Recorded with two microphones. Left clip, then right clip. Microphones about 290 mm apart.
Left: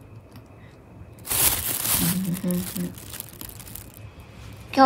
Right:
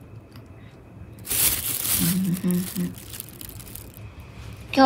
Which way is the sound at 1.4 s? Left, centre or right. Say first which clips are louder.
Left 1 dB; left.